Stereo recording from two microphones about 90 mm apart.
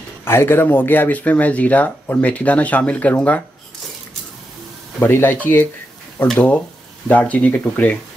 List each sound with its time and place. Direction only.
0.2 s speech: 25° left (ahead or behind)
5.0 s speech: 25° left (ahead or behind)